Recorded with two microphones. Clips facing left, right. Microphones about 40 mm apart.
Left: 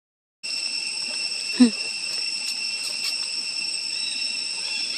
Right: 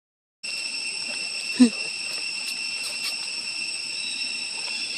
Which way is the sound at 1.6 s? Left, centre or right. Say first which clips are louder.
Left 1 dB; centre.